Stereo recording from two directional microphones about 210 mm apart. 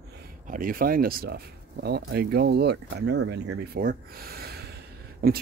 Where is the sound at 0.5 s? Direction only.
40° right (ahead or behind).